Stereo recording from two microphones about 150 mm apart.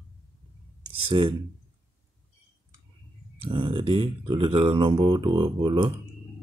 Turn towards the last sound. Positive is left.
turn(degrees=-30)  # may be behind; listen again after turning